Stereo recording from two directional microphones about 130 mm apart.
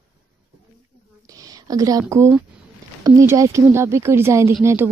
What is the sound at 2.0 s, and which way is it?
Speech, 20° right (ahead or behind).